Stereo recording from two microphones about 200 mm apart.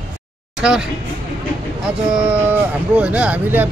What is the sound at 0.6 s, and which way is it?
Speech, 5° right (ahead or behind).